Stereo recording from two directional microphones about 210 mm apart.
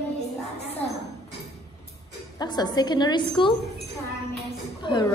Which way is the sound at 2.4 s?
20° left (ahead or behind).